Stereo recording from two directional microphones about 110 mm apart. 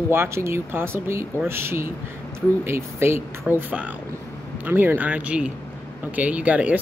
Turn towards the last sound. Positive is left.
turn(degrees=-10)  # may be behind; listen again after turning